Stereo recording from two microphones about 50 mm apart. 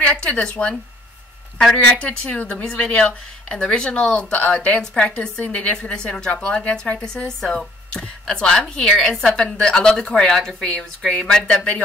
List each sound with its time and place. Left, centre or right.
0.0 s speech: left
2.0 s a woman's voice: left